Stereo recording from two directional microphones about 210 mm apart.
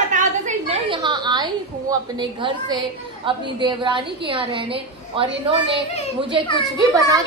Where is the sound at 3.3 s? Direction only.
20° right (ahead or behind).